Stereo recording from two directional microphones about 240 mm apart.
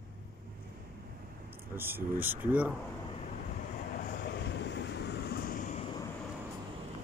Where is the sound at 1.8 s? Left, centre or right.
Centre.